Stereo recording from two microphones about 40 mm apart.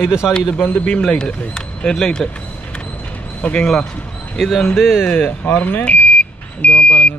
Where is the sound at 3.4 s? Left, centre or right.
Left.